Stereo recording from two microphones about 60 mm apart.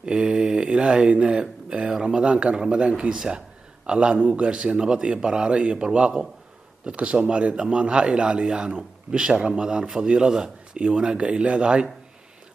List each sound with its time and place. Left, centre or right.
0.0 s speech: centre